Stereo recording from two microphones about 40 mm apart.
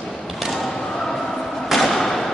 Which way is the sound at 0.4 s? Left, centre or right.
Centre.